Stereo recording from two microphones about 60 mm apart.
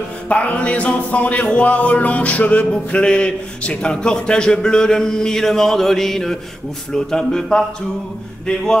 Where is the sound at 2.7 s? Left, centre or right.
Centre.